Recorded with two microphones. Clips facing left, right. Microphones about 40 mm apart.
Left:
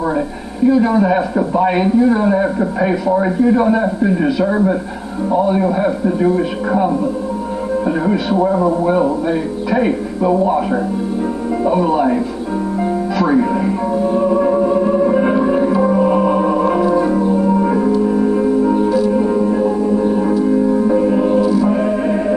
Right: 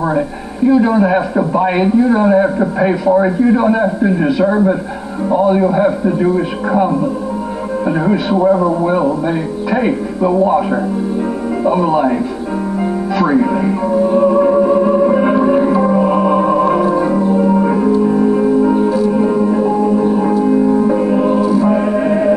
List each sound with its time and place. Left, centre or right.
0.7 s a man's voice: centre
8.0 s a man's voice: centre
13.2 s music: centre
20.3 s music: right
21.4 s music: right
21.6 s music: centre